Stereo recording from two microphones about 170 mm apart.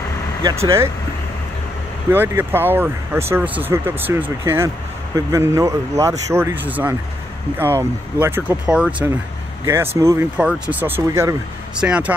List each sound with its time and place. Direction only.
2.0 s speech: 15° right (ahead or behind)